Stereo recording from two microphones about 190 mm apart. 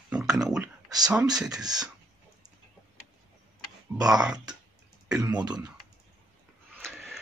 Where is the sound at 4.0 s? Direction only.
5° right (ahead or behind).